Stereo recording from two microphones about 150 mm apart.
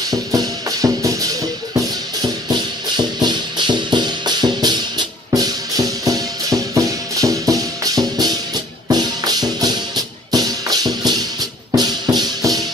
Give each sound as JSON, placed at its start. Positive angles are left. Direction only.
{"t": 0.3, "sound": "music", "side_deg": -25}
{"t": 3.0, "sound": "music", "side_deg": -30}